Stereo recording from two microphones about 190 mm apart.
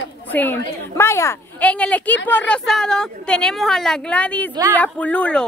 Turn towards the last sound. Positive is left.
turn(degrees=5)  # may be behind; listen again after turning